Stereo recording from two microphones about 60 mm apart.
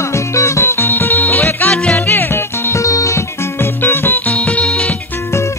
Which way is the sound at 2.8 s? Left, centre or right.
Left.